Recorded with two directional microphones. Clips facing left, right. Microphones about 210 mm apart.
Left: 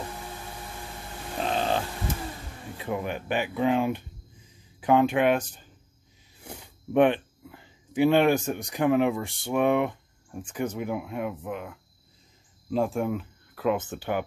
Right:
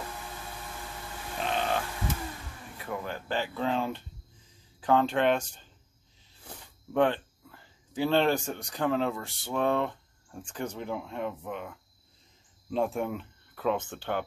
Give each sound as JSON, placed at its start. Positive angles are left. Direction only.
{"t": 1.4, "sound": "music", "side_deg": 35}
{"t": 2.8, "sound": "speech", "side_deg": 20}